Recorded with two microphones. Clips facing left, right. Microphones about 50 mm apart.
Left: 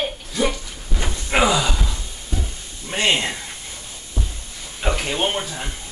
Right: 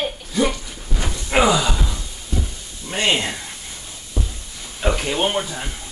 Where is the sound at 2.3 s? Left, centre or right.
Centre.